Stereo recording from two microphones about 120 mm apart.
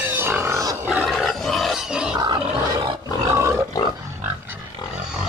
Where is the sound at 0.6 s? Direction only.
20° right (ahead or behind).